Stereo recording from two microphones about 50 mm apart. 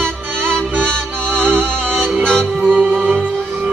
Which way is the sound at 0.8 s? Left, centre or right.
Centre.